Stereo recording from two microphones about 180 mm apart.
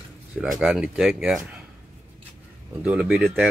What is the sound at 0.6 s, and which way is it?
Speech, 5° right (ahead or behind).